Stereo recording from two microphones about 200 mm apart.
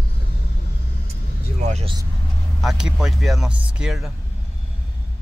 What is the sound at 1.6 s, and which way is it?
Speech, 35° right (ahead or behind).